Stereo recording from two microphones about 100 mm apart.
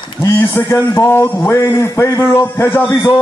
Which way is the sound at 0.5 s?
25° left (ahead or behind).